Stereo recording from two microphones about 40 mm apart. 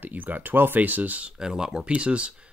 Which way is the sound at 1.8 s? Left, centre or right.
Right.